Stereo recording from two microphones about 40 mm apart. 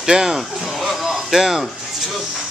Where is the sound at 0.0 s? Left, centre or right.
Centre.